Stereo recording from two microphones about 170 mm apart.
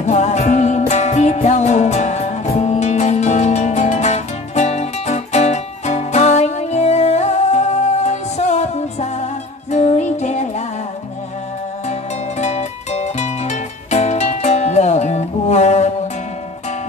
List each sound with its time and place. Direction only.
0.0 s music: 45° left (ahead or behind)
11.9 s music: 40° left (ahead or behind)